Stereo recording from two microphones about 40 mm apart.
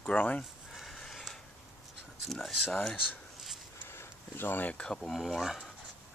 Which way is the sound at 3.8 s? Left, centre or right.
Left.